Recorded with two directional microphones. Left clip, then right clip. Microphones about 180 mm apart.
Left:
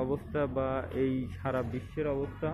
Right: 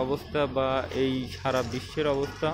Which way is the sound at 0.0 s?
15° right (ahead or behind).